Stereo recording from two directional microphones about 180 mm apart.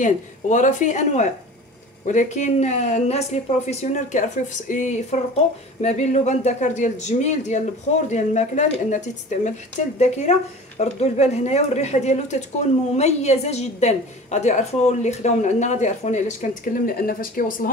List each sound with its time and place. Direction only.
0.0 s a woman's voice: 45° left (ahead or behind)